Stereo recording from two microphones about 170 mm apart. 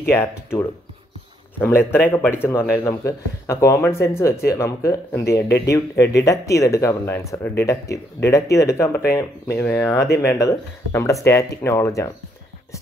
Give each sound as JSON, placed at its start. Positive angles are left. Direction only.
{"t": 0.1, "sound": "speech", "side_deg": 15}